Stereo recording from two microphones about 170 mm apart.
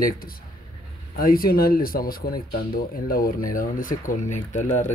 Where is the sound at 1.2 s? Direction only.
60° left (ahead or behind).